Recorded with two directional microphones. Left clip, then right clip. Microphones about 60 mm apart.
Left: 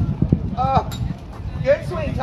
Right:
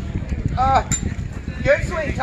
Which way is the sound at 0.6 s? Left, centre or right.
Left.